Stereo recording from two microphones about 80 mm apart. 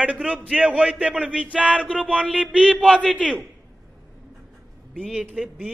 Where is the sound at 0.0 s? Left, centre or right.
Centre.